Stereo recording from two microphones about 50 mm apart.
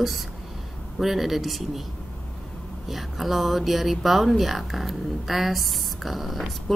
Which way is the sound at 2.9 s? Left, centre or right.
Centre.